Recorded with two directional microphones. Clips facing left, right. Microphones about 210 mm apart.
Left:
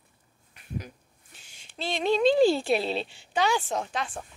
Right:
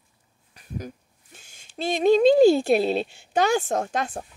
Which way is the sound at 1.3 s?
45° right (ahead or behind).